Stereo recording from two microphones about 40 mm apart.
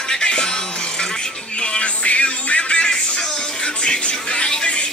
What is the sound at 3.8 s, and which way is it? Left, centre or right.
Speech, left.